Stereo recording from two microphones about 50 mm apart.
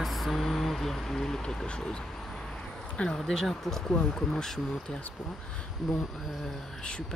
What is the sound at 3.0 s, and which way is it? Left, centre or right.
Speech, centre.